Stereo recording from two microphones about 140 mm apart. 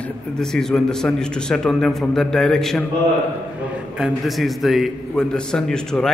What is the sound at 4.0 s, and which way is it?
A man's voice, centre (ahead or behind).